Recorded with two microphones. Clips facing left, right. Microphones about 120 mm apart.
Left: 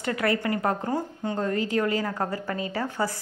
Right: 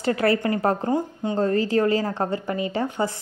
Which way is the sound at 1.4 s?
35° right (ahead or behind).